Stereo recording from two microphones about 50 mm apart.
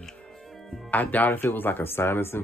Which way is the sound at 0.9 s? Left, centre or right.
Left.